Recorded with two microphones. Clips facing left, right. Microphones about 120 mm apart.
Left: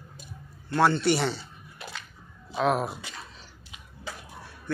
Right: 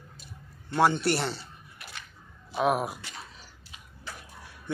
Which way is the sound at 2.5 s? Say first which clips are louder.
Left 1 dB; 10° right (ahead or behind).